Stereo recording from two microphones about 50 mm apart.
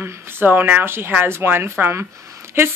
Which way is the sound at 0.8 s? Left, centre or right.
Right.